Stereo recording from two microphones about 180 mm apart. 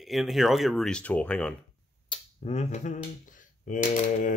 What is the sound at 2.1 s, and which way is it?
Speech, 40° left (ahead or behind).